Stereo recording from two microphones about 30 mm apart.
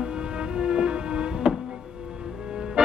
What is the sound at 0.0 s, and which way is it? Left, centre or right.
Music, right.